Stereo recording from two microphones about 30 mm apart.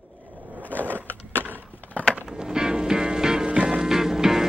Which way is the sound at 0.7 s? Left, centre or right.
Left.